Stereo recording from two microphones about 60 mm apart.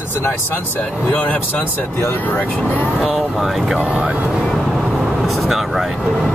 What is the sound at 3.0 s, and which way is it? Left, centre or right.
Speech, centre.